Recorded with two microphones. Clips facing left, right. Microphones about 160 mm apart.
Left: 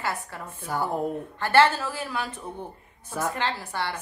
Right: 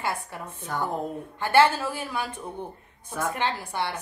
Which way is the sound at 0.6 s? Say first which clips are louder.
Left 2 dB; 5° left (ahead or behind).